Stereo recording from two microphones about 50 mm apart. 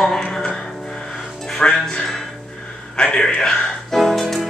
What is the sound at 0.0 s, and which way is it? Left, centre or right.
Music, centre.